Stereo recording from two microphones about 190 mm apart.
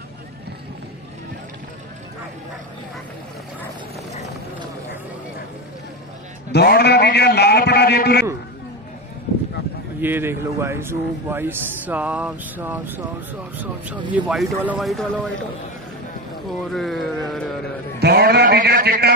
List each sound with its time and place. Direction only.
6.5 s a man's voice: 55° left (ahead or behind)
9.9 s a man's voice: 10° right (ahead or behind)
16.7 s a man's voice: centre (ahead or behind)
17.9 s a man's voice: 60° right (ahead or behind)